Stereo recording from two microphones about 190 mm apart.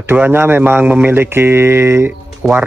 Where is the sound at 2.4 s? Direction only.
5° right (ahead or behind).